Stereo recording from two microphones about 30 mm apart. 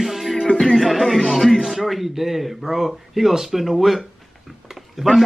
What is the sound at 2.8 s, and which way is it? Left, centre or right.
Speech, centre.